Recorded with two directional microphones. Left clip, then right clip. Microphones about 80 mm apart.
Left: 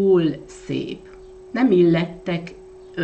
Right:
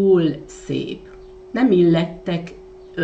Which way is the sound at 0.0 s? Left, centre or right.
Left.